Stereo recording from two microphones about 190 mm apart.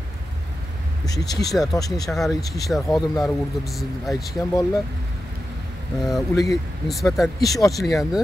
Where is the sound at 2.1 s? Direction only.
Centre (ahead or behind).